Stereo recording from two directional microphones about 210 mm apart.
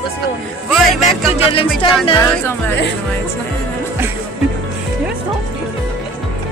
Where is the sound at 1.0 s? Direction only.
25° left (ahead or behind).